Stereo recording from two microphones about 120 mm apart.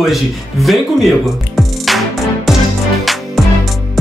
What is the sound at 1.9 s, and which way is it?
Music, centre (ahead or behind).